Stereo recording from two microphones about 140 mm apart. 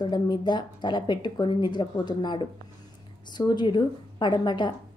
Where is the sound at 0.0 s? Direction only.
30° left (ahead or behind).